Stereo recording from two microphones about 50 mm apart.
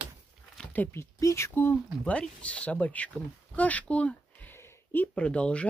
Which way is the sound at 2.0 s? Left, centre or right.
Left.